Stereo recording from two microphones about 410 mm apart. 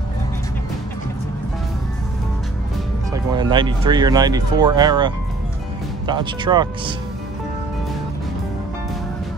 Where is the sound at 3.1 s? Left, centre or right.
Centre.